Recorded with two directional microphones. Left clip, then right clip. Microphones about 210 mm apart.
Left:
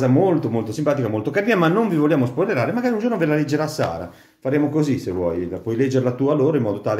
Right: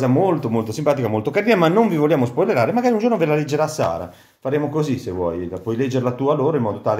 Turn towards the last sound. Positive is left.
turn(degrees=-15)  # may be behind; listen again after turning